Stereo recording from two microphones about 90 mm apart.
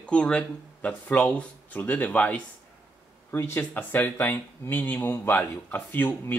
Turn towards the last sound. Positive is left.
turn(degrees=25)  # may be behind; listen again after turning